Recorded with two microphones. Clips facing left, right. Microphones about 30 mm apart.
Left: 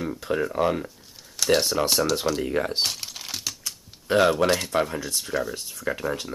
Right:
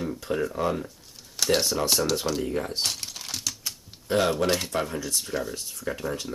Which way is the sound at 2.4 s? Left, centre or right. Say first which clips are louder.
Left 3 dB; left.